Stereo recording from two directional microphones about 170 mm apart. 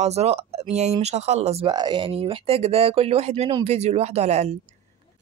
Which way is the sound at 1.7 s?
25° right (ahead or behind).